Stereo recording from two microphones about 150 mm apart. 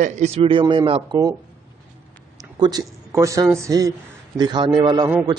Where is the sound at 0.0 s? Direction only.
50° right (ahead or behind).